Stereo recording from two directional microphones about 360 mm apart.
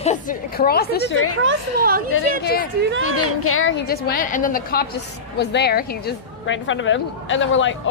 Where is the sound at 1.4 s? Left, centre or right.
Right.